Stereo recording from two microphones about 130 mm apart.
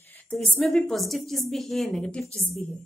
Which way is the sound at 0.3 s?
5° left (ahead or behind).